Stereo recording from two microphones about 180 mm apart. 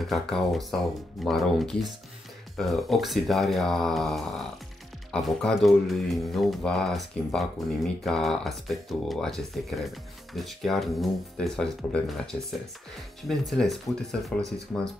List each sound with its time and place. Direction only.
0.0 s speech: centre (ahead or behind)
13.5 s speech: centre (ahead or behind)